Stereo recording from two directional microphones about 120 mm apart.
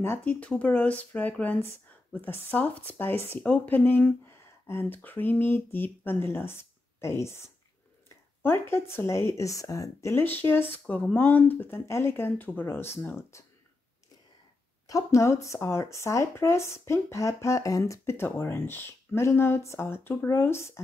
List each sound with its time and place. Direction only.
0.0 s speech: 15° left (ahead or behind)
14.9 s speech: 25° left (ahead or behind)